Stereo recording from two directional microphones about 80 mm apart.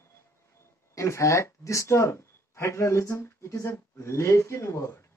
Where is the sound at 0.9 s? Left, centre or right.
Left.